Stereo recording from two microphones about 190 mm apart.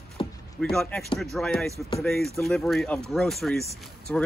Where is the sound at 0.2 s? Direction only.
25° left (ahead or behind).